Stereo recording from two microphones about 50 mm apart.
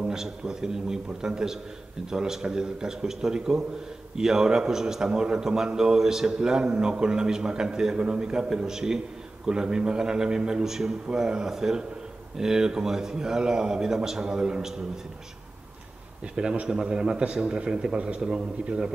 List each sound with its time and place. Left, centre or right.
0.0 s a man's voice: centre
16.3 s a man's voice: centre